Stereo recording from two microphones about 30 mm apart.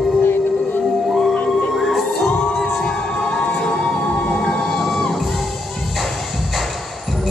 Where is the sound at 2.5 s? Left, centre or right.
Centre.